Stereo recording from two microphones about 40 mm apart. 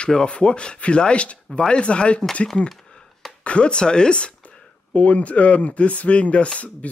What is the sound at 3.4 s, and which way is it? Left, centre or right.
Speech, left.